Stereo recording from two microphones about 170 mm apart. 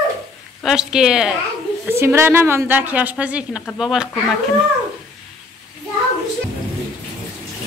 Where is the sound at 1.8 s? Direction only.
15° right (ahead or behind).